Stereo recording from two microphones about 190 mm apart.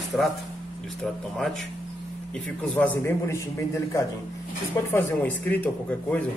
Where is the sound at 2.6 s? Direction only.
10° left (ahead or behind).